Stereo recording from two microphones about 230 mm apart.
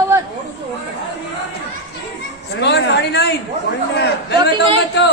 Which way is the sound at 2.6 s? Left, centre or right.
Left.